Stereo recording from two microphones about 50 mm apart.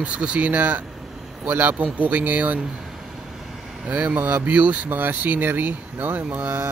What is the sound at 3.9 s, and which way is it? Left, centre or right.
Speech, right.